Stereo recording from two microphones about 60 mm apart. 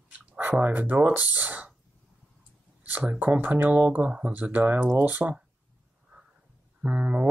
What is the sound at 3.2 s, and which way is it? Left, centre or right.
Speech, right.